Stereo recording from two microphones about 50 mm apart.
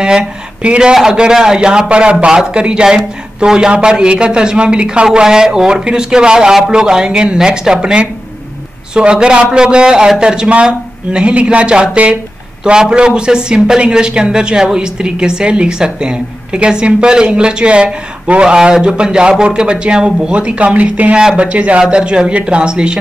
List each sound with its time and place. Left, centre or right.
0.0 s speech: centre